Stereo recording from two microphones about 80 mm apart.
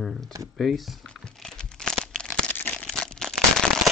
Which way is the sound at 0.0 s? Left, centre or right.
Centre.